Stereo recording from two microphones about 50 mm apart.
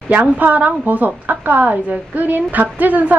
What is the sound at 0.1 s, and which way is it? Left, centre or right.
A woman's voice, right.